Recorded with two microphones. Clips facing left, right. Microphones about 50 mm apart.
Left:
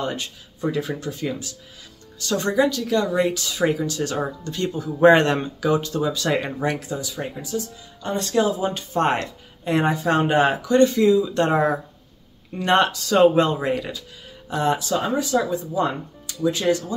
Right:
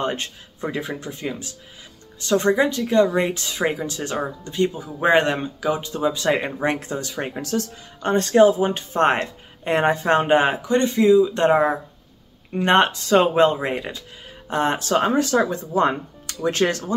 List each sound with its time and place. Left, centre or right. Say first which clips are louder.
0.0 s speech: right 2 dB; right
0.7 s speech: left 2 dB; right
7.4 s speech: right 3 dB; right
8.1 s speech: right 6 dB; right
12.5 s speech: right 2 dB; right
14.5 s speech: right 1 dB; right